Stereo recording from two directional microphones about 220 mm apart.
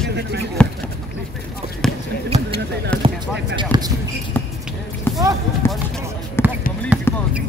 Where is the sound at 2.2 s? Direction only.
25° right (ahead or behind).